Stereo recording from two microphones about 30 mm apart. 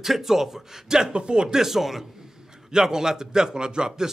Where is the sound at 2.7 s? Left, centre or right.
Right.